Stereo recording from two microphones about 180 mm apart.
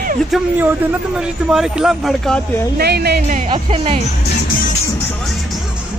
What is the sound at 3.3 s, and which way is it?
Speech, 35° right (ahead or behind).